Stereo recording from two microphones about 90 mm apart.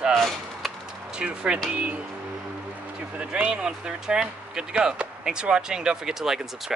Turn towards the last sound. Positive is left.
turn(degrees=-5)  # may be behind; listen again after turning